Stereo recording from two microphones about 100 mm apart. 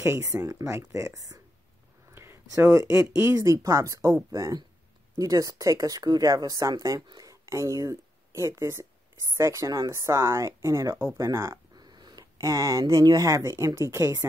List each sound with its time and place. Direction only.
0.0 s speech: 30° right (ahead or behind)
7.1 s a sound: 40° right (ahead or behind)
7.4 s speech: 30° right (ahead or behind)
11.7 s speech: 45° right (ahead or behind); by 14.2 s 30° right (ahead or behind)